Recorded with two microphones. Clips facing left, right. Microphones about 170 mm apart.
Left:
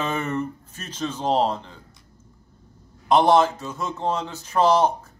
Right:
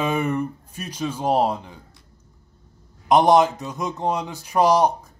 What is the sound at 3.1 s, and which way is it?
Speech, 15° right (ahead or behind).